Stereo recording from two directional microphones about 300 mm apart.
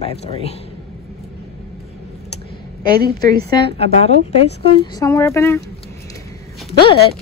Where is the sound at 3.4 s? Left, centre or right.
Centre.